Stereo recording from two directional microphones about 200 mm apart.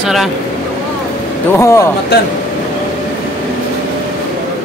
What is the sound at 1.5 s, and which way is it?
Speech, 15° left (ahead or behind).